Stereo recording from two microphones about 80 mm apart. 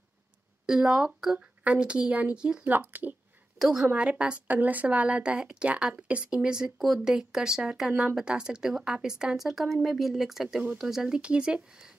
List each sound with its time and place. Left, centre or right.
0.7 s speech: centre
2.6 s speech: right
3.5 s a woman's voice: centre
3.8 s speech: centre
7.9 s speech: centre